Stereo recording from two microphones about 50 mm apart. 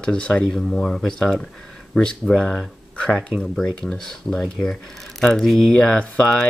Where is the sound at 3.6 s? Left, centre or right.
Centre.